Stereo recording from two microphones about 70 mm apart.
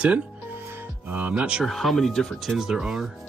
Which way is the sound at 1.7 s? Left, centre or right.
Centre.